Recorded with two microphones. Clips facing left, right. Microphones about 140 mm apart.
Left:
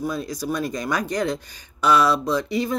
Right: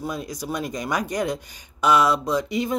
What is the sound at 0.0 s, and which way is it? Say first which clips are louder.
Speech: left 3 dB; 15° right (ahead or behind).